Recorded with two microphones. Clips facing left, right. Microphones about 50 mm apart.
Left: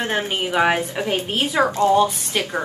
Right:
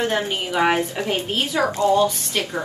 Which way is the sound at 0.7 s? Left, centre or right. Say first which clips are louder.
Even; centre.